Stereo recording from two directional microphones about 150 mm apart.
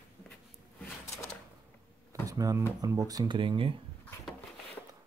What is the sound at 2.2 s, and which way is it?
Speech, 20° right (ahead or behind).